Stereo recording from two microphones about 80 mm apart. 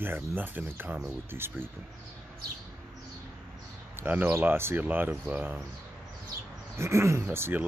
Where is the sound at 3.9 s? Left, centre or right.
Right.